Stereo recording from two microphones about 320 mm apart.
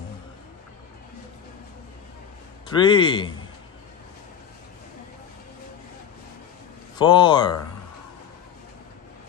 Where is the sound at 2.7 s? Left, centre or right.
Centre.